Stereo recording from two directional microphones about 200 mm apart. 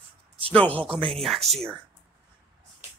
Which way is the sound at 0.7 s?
5° left (ahead or behind).